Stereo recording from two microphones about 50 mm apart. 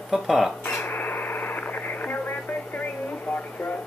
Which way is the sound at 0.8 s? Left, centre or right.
Left.